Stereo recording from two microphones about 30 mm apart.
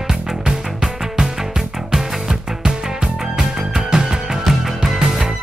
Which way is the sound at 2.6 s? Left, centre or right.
Right.